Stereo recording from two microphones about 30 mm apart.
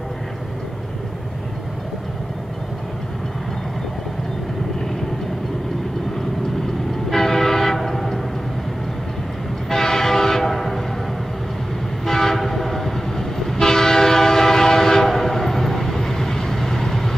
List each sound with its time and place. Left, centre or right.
7.1 s train: centre
9.7 s train: centre
12.1 s train: centre